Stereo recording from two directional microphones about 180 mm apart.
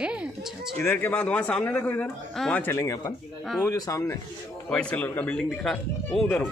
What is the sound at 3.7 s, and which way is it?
Speech, 20° left (ahead or behind).